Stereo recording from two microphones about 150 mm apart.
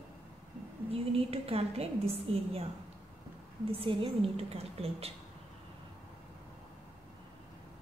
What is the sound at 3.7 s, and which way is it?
A woman's voice, 40° right (ahead or behind).